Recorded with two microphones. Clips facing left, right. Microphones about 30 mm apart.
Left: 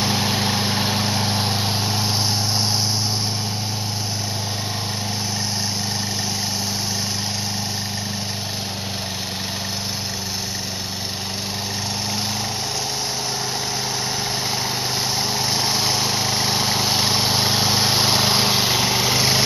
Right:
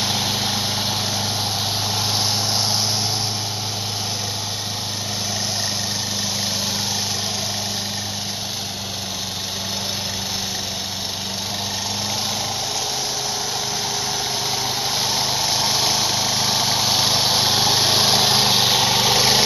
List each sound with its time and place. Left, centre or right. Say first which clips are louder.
0.0 s vehicle: left 1 dB; centre
1.1 s vehicle: left 2 dB; left
1.9 s vehicle: even; centre
15.1 s vehicle: right 1 dB; centre